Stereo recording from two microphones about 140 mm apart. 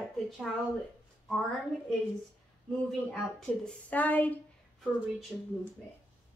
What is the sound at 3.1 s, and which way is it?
A woman's voice, 5° left (ahead or behind).